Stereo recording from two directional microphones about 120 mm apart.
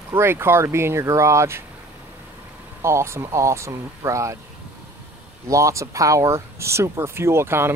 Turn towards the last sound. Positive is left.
turn(degrees=-20)  # may be behind; listen again after turning